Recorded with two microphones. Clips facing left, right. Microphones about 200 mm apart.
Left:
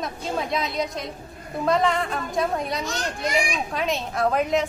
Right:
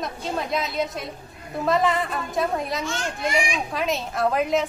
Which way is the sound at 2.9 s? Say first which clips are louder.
Even; 40° left (ahead or behind).